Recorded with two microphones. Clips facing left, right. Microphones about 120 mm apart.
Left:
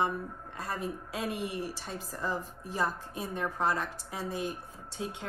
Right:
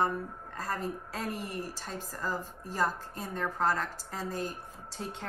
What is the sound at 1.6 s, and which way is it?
A woman's voice, 10° left (ahead or behind).